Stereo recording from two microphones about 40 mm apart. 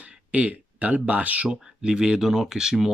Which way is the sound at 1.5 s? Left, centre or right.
Centre.